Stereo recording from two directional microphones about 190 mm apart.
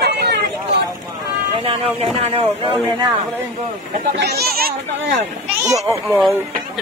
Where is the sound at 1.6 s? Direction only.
30° right (ahead or behind).